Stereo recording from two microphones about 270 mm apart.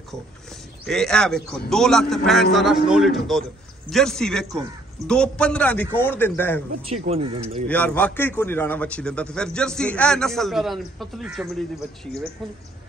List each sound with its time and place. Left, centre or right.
0.8 s a man's voice: centre
6.9 s speech: right
7.6 s a man's voice: centre